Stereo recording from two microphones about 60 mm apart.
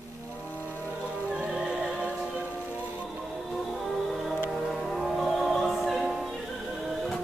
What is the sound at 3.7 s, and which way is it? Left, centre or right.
Music, centre.